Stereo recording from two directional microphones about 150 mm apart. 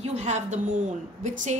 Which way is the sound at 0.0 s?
50° right (ahead or behind).